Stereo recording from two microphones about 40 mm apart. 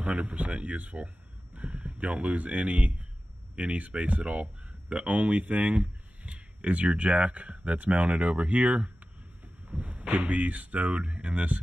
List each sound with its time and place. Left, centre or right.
0.0 s speech: right
9.7 s a sound: right
10.1 s speech: right